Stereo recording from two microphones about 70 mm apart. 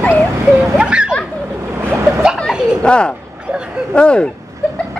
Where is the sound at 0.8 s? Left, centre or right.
Centre.